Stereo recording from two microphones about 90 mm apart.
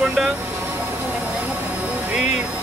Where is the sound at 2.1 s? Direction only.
15° right (ahead or behind).